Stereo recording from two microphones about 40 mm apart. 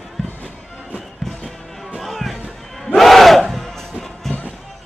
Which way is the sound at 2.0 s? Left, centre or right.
Centre.